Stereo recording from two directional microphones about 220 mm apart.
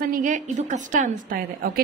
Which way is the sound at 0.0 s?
40° right (ahead or behind).